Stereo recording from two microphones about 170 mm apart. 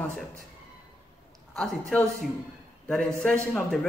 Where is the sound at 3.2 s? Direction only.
10° left (ahead or behind).